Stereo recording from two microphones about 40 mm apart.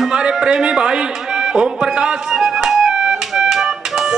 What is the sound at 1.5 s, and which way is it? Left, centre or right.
Music, centre.